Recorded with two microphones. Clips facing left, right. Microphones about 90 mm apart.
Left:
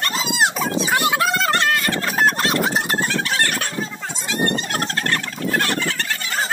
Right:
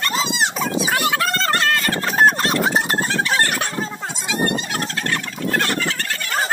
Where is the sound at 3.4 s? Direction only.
25° right (ahead or behind).